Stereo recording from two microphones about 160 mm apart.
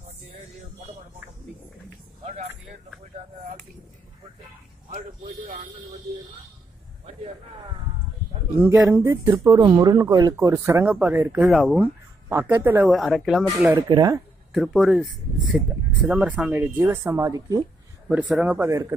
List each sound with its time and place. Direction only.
8.8 s speech: 20° right (ahead or behind)
11.5 s speech: 5° right (ahead or behind)
12.3 s speech: 15° right (ahead or behind)
12.9 s speech: centre (ahead or behind)
13.8 s speech: 25° right (ahead or behind)
14.5 s speech: centre (ahead or behind)
16.1 s speech: 5° right (ahead or behind); by 17.6 s 20° right (ahead or behind)
18.0 s speech: 5° right (ahead or behind)